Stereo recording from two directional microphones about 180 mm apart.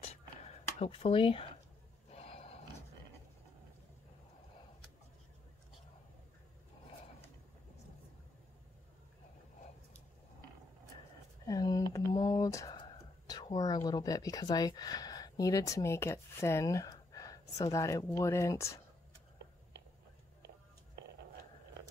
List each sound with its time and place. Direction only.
0.7 s speech: 35° left (ahead or behind)
2.0 s snort: 35° left (ahead or behind)
11.4 s a sound: 20° left (ahead or behind)
13.8 s speech: 20° left (ahead or behind)